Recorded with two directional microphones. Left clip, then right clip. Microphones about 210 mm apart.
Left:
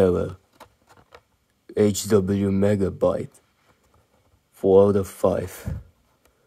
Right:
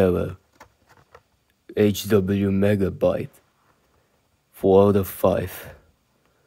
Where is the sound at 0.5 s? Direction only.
25° left (ahead or behind).